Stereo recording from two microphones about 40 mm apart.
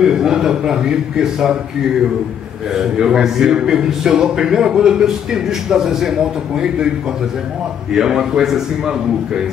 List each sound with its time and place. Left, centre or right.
0.0 s a man's voice: centre
2.7 s a man's voice: centre
7.9 s a man's voice: centre